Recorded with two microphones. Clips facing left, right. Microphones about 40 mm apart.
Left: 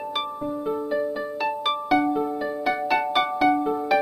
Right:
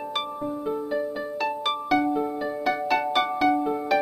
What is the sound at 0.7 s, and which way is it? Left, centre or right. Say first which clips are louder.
Music: left 3 dB; centre.